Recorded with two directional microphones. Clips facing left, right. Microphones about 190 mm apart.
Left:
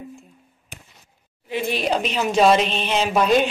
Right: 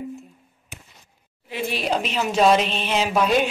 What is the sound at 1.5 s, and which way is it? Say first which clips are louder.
A woman's voice: left 2 dB; 5° right (ahead or behind).